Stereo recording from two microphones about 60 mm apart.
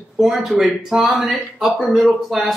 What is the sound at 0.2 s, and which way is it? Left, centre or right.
A man's voice, centre.